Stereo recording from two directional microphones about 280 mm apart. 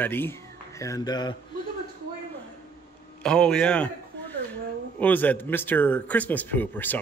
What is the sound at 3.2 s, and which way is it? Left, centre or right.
A man's voice, centre.